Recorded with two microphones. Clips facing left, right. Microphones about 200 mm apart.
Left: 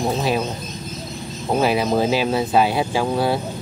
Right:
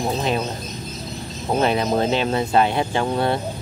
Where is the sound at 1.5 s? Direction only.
5° left (ahead or behind).